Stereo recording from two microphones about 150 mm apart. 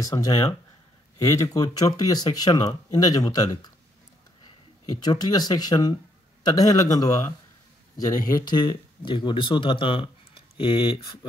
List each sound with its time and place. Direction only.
0.0 s speech: 25° left (ahead or behind)
5.0 s speech: 25° left (ahead or behind)